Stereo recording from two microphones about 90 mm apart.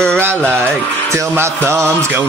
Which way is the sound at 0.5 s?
25° right (ahead or behind).